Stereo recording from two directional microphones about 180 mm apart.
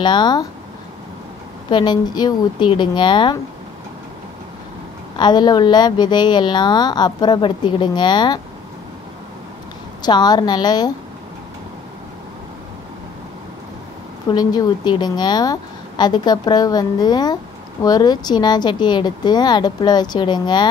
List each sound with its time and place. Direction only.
0.0 s a woman's voice: 25° left (ahead or behind)
1.7 s a woman's voice: 25° left (ahead or behind)
5.1 s a woman's voice: 25° left (ahead or behind)
10.0 s a woman's voice: 25° left (ahead or behind)
14.3 s a woman's voice: 20° left (ahead or behind)